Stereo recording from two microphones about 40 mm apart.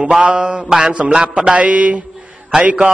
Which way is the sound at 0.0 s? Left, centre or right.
Right.